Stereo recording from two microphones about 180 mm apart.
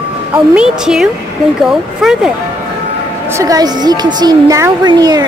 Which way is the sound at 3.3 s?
15° right (ahead or behind).